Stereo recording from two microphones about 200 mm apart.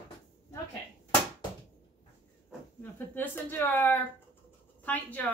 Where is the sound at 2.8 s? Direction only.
10° left (ahead or behind).